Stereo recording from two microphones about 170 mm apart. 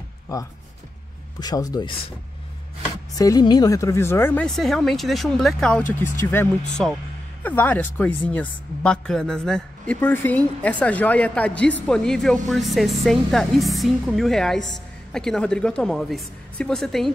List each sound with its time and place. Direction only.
0.3 s speech: 20° left (ahead or behind)
3.2 s speech: 20° left (ahead or behind)
4.5 s a woman's voice: centre (ahead or behind)
6.8 s a woman's voice: centre (ahead or behind)